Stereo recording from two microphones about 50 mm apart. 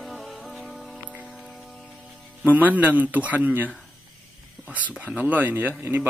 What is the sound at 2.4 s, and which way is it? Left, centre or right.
Speech, right.